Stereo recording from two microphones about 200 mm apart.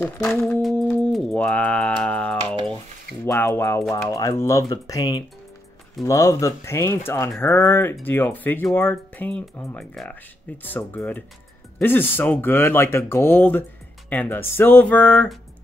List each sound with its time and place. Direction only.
0.0 s speech: 10° left (ahead or behind)
0.6 s music: centre (ahead or behind)
3.3 s speech: 10° left (ahead or behind)